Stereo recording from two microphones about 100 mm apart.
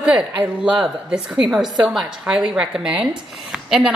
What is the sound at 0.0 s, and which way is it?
A woman's voice, 10° right (ahead or behind).